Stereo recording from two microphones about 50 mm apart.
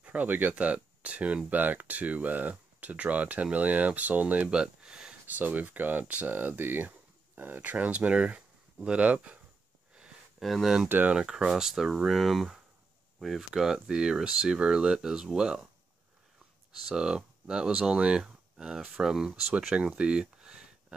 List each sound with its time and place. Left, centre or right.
0.0 s speech: right
4.5 s speech: centre
5.2 s speech: right
7.7 s speech: right
10.4 s speech: centre
11.1 s speech: centre
16.8 s speech: centre